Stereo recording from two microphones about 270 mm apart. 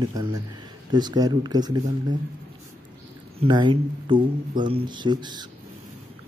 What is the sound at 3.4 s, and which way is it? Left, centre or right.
Speech, centre.